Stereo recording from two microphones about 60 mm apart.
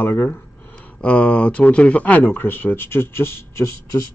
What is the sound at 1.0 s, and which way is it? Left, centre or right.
Speech, centre.